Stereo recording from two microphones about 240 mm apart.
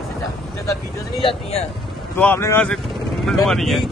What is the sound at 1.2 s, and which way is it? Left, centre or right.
Speech, left.